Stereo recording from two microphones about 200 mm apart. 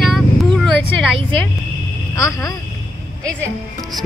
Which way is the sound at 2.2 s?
15° left (ahead or behind).